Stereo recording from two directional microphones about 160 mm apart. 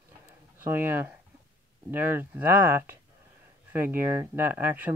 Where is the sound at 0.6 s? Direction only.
15° right (ahead or behind).